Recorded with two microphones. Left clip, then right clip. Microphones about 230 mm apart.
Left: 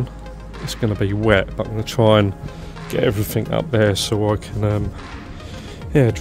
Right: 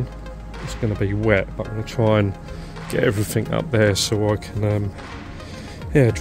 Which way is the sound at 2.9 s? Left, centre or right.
Centre.